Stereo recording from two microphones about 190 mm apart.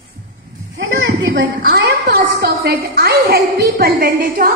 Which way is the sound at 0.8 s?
80° right.